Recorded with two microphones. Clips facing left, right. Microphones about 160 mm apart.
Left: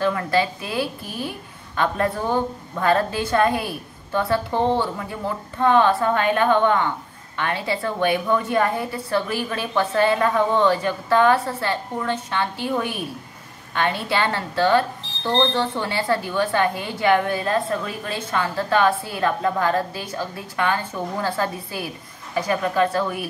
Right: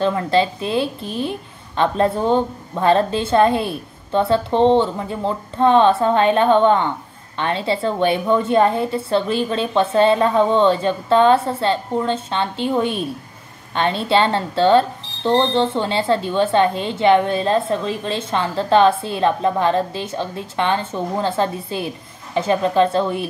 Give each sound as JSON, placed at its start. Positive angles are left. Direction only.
{"t": 0.0, "sound": "speech", "side_deg": -25}